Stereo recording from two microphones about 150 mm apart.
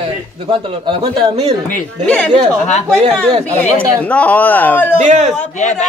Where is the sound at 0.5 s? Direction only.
40° right (ahead or behind).